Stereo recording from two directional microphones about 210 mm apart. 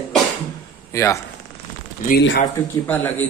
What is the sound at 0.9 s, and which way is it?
Speech, 15° left (ahead or behind).